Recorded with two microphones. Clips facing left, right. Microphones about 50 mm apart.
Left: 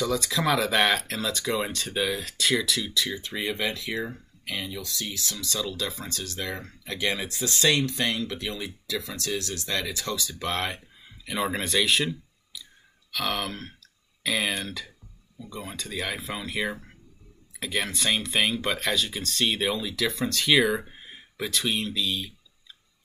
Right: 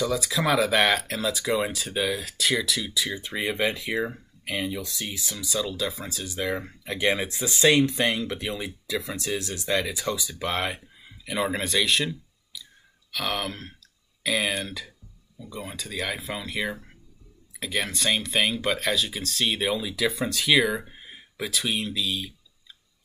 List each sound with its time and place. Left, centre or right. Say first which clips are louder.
0.0 s speech: right 1 dB; centre